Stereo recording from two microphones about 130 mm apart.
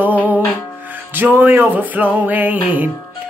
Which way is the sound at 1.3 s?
15° right (ahead or behind).